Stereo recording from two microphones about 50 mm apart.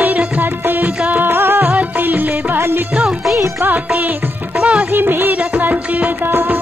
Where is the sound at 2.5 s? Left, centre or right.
Right.